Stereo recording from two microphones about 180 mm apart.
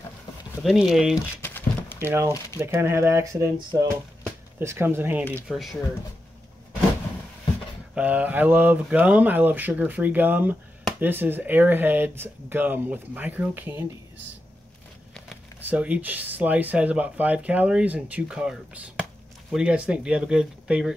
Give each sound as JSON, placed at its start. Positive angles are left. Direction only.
{"t": 0.6, "sound": "speech", "side_deg": 0}
{"t": 1.1, "sound": "crumpling", "side_deg": 10}
{"t": 2.0, "sound": "speech", "side_deg": -15}
{"t": 5.5, "sound": "speech", "side_deg": 0}
{"t": 7.9, "sound": "speech", "side_deg": -10}
{"t": 15.6, "sound": "speech", "side_deg": -5}